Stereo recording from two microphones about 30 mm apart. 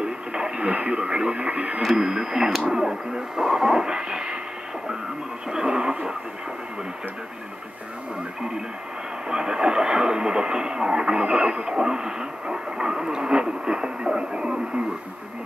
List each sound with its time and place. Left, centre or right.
0.0 s speech: right
1.8 s speech: centre
2.0 s radio: centre
5.5 s radio: right
8.4 s radio: right